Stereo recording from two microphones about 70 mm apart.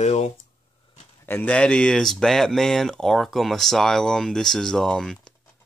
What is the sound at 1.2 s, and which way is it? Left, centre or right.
Speech, left.